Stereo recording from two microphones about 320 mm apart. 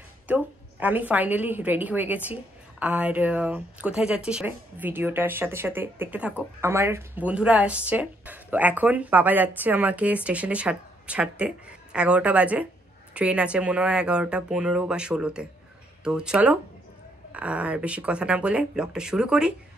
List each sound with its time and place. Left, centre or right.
0.3 s speech: centre